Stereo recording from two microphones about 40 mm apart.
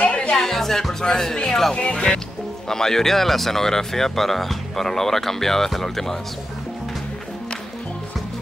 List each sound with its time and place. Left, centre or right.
0.0 s music: left
0.4 s speech: centre
1.7 s speech: left
2.7 s speech: centre